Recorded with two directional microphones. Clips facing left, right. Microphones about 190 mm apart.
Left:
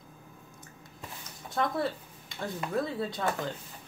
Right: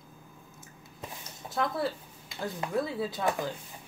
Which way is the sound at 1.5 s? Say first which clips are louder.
Even; centre (ahead or behind).